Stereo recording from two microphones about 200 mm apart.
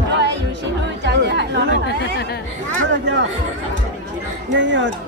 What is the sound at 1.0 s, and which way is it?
Chatter, 60° right (ahead or behind).